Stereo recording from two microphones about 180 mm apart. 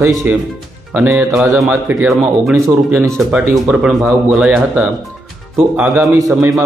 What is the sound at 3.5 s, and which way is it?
A man's voice, 5° right (ahead or behind).